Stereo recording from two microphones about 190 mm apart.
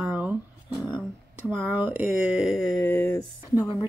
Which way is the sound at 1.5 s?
10° right (ahead or behind).